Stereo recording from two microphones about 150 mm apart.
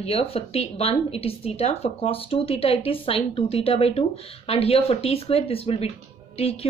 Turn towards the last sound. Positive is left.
turn(degrees=40)  # may be behind; listen again after turning